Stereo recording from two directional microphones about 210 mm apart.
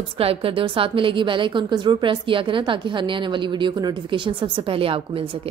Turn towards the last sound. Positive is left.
turn(degrees=-25)  # may be behind; listen again after turning